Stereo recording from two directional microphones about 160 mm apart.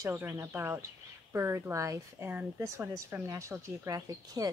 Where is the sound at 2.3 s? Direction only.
10° right (ahead or behind).